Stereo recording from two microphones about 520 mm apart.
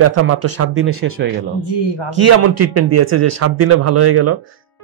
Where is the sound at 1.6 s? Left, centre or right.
Left.